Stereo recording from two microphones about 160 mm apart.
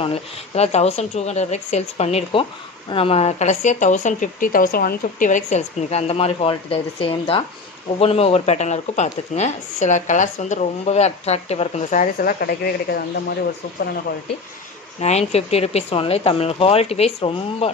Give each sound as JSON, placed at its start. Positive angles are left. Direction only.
{"t": 0.0, "sound": "speech", "side_deg": 40}
{"t": 15.0, "sound": "speech", "side_deg": 40}